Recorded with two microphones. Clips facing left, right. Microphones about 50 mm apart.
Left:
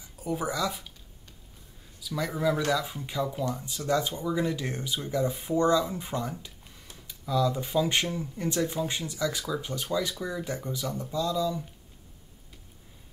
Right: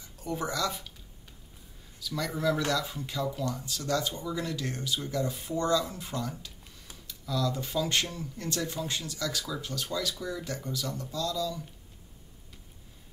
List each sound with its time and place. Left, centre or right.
0.0 s speech: centre
2.0 s speech: centre